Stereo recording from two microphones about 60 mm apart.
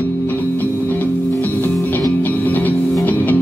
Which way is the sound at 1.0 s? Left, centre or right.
Left.